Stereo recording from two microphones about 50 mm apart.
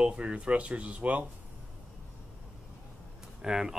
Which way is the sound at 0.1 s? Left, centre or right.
Right.